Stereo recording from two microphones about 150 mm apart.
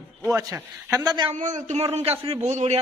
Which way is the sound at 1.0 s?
25° right (ahead or behind).